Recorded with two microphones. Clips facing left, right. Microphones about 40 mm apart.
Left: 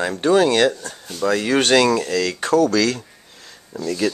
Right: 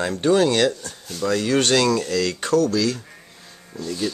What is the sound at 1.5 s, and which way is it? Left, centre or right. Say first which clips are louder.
Speech: left 3 dB; left.